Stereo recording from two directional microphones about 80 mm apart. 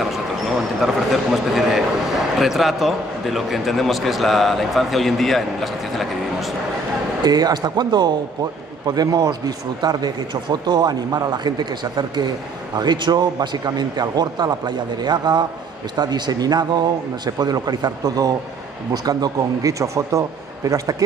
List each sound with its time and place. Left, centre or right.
0.0 s speech: centre
7.2 s a man's voice: right